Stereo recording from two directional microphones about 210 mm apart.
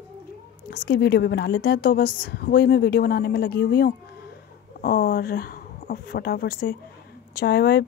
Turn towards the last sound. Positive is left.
turn(degrees=50)  # may be behind; listen again after turning